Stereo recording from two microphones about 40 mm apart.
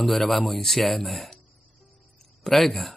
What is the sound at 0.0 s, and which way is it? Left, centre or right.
Speech, centre.